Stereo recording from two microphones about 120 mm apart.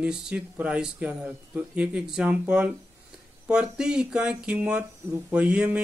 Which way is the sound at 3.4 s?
5° right (ahead or behind).